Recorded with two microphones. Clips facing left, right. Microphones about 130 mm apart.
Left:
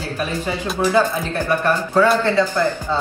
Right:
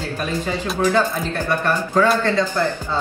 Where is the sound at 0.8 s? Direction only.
10° left (ahead or behind).